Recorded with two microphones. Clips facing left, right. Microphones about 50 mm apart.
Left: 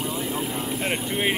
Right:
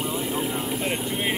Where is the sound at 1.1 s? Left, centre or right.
Centre.